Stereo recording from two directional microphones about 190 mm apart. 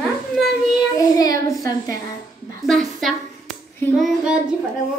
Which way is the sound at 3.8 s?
10° left (ahead or behind).